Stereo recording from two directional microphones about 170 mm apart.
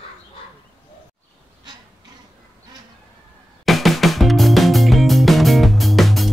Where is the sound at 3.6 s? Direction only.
Centre (ahead or behind).